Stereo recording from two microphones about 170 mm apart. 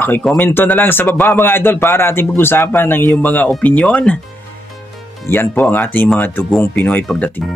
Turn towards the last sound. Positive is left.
turn(degrees=10)  # may be behind; listen again after turning